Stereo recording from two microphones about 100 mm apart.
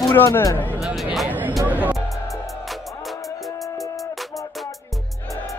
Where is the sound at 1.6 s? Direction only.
15° right (ahead or behind).